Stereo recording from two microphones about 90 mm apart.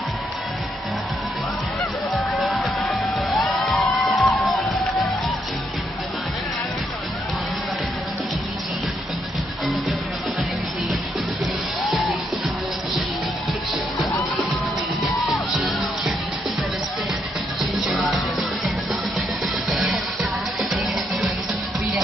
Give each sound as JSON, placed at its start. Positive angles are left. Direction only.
{"t": 2.1, "sound": "music", "side_deg": 0}
{"t": 14.5, "sound": "music", "side_deg": 0}
{"t": 17.6, "sound": "music", "side_deg": 0}
{"t": 19.7, "sound": "music", "side_deg": 0}